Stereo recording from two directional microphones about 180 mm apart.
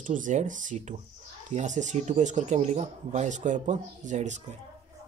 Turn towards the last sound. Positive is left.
turn(degrees=-40)  # may be behind; listen again after turning